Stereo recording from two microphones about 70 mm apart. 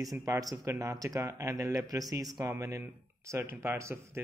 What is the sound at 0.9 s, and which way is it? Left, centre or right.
Speech, right.